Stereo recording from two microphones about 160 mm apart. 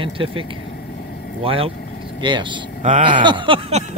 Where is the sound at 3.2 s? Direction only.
30° right (ahead or behind).